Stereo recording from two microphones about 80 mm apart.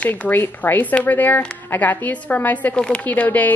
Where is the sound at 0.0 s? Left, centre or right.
Left.